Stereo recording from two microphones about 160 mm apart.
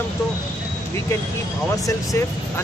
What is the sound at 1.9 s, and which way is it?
Speech, 20° left (ahead or behind).